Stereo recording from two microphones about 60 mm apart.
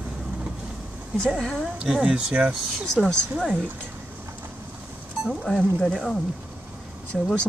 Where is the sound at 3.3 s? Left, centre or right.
Centre.